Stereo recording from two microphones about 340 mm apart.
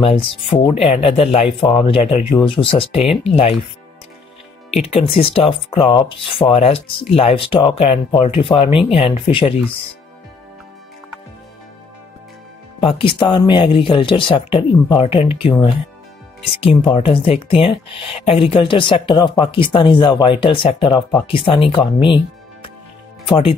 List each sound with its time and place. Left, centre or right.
0.0 s speech: centre
4.7 s speech: centre
12.8 s speech: centre